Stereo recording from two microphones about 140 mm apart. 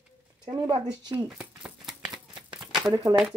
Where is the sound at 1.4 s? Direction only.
5° right (ahead or behind).